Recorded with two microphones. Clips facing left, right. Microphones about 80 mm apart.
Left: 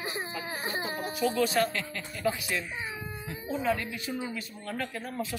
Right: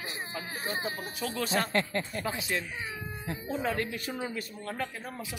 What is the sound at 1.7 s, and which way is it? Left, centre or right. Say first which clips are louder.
Speech: right 6 dB; right.